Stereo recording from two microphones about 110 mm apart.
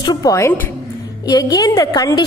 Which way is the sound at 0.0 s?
35° left (ahead or behind).